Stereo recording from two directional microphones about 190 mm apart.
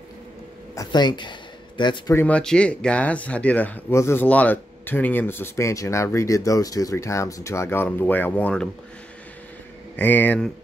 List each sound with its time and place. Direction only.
0.7 s speech: 20° left (ahead or behind)
2.1 s speech: 5° left (ahead or behind)
9.9 s speech: 10° left (ahead or behind)